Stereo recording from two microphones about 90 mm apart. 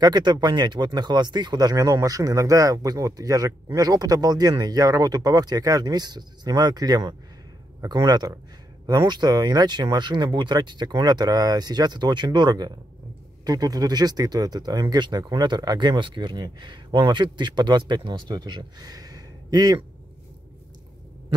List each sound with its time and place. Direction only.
0.0 s speech: 55° right (ahead or behind)